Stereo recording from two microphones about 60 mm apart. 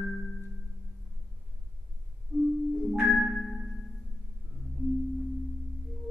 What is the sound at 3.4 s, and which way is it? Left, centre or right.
Music, centre.